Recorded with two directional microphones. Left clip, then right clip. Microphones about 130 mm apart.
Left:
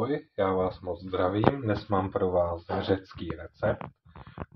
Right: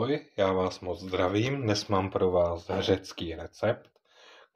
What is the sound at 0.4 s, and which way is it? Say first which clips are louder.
Speech: even; 40° right (ahead or behind).